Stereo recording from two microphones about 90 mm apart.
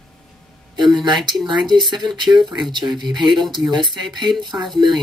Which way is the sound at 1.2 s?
Centre (ahead or behind).